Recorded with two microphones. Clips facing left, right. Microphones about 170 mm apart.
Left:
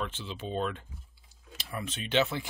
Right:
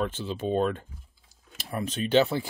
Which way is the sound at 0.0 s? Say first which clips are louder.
Right 7 dB; 45° right (ahead or behind).